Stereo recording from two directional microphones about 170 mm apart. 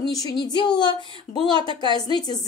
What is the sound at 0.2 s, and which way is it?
A woman's voice, 25° left (ahead or behind).